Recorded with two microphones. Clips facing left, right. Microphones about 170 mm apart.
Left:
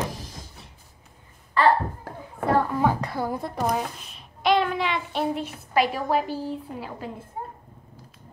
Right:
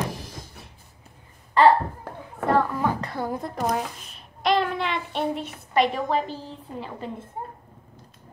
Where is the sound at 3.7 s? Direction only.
Centre (ahead or behind).